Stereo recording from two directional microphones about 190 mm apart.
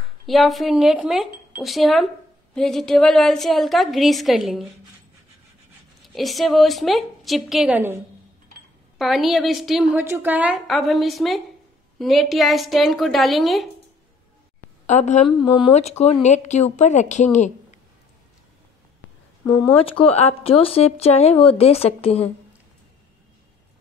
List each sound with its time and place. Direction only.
0.3 s a woman's voice: centre (ahead or behind)
6.0 s a woman's voice: centre (ahead or behind)
14.9 s speech: 40° left (ahead or behind)
15.2 s speech: 25° left (ahead or behind)
19.4 s speech: 15° left (ahead or behind)
19.8 s speech: 30° left (ahead or behind)